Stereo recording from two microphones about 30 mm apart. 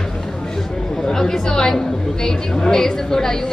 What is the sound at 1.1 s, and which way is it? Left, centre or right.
A woman's voice, centre.